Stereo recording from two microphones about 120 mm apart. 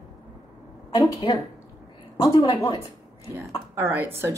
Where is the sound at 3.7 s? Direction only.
20° right (ahead or behind).